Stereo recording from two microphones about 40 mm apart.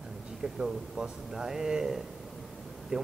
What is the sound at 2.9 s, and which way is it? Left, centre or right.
Speech, centre.